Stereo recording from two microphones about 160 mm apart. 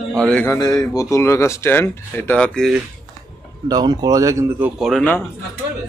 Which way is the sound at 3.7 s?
25° right (ahead or behind).